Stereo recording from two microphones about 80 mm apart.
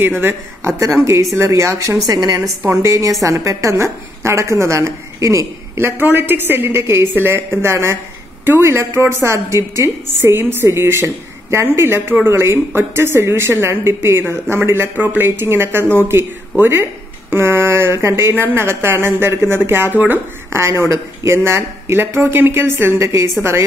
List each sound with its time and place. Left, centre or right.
0.2 s speech: right
0.7 s a woman's voice: right
2.0 s a woman's voice: right
2.6 s a woman's voice: right
20.6 s a woman's voice: right